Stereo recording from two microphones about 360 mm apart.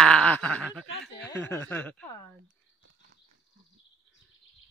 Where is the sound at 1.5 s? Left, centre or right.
Centre.